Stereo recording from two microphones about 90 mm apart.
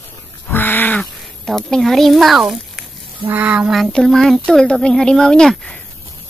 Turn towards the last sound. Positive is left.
turn(degrees=5)  # may be behind; listen again after turning